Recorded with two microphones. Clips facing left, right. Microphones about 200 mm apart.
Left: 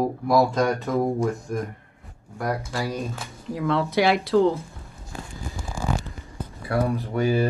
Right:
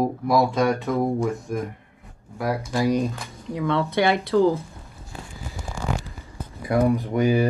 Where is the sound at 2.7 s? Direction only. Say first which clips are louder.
Right 7 dB; 15° right (ahead or behind).